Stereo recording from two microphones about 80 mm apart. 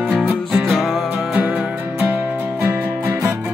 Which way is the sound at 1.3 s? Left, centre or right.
Centre.